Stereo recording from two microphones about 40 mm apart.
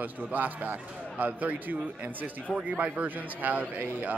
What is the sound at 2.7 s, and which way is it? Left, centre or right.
Speech, right.